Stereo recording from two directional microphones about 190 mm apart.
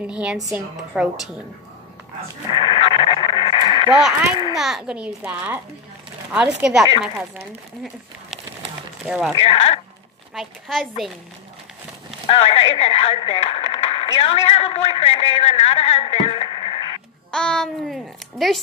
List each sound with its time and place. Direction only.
0.0 s a child's voice: 5° right (ahead or behind)
2.6 s radio: 30° left (ahead or behind)
4.6 s a child's voice: centre (ahead or behind)
9.4 s speech: 30° left (ahead or behind)
10.3 s a child's voice: centre (ahead or behind)
12.3 s speech: 30° left (ahead or behind)
17.3 s a child's voice: 5° left (ahead or behind)